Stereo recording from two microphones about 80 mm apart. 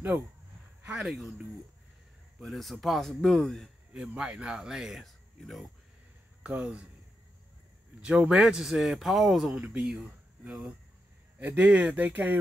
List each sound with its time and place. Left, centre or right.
0.8 s speech: centre
2.4 s speech: centre
3.9 s speech: centre
6.4 s speech: centre
8.0 s speech: centre
11.3 s speech: centre